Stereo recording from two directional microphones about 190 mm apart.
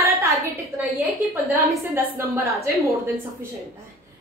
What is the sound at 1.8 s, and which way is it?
A woman's voice, 15° right (ahead or behind).